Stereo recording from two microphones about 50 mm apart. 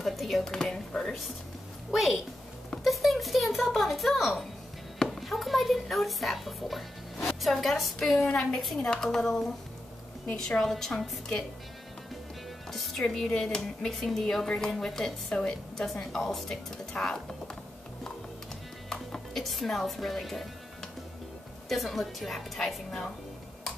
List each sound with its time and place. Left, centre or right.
0.0 s a sound: centre
0.5 s speech: centre
1.9 s a woman's voice: centre
2.8 s a sound: centre
4.9 s a woman's voice: centre
10.6 s speech: centre
12.7 s music: centre
13.0 s a woman's voice: centre
18.9 s speech: centre
21.6 s a woman's voice: centre